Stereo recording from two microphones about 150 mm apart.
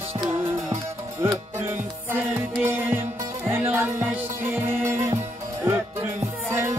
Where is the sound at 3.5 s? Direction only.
15° right (ahead or behind).